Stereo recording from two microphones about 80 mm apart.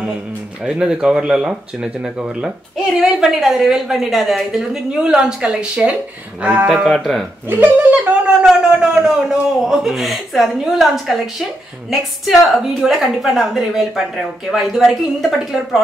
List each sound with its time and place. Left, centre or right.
0.7 s a woman's voice: centre
6.8 s a woman's voice: centre
7.4 s a woman's voice: right; by 15.8 s centre